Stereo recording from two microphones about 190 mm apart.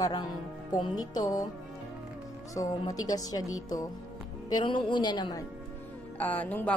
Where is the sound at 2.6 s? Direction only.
20° left (ahead or behind).